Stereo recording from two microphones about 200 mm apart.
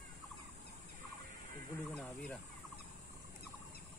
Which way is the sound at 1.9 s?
5° left (ahead or behind).